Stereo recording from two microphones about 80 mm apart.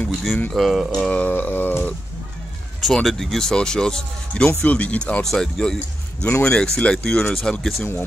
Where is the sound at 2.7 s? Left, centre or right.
Centre.